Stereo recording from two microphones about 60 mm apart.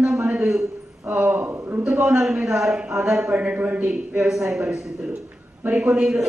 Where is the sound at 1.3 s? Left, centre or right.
Right.